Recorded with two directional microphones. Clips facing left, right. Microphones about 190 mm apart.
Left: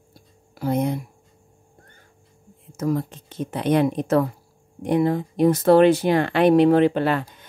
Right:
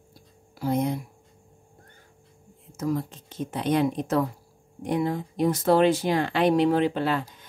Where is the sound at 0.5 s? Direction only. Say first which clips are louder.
Left 3 dB; 60° left (ahead or behind).